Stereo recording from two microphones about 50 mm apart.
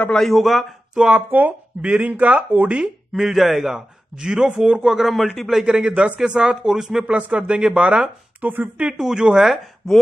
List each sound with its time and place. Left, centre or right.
0.2 s speech: centre
0.9 s a man's voice: centre
1.3 s speech: right
3.1 s a man's voice: centre
5.7 s a man's voice: centre
7.1 s speech: right
8.5 s speech: right
8.8 s a man's voice: centre